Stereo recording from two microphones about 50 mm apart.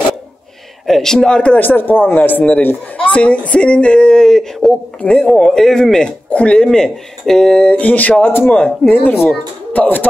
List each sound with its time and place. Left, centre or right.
0.8 s speech: centre
1.5 s speech: left
3.0 s speech: left
6.3 s speech: left
6.6 s speech: centre; by 8.1 s left
8.2 s a man's voice: left
8.5 s speech: left